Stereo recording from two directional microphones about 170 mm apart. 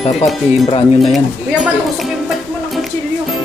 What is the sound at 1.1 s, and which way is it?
Speech, centre (ahead or behind).